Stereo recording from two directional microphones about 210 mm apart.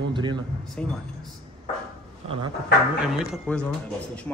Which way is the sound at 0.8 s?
5° left (ahead or behind).